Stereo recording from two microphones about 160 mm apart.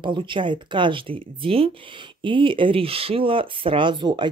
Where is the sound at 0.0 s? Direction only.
30° right (ahead or behind).